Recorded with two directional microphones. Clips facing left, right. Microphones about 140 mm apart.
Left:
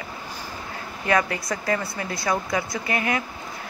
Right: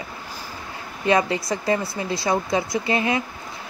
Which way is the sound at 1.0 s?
20° right (ahead or behind).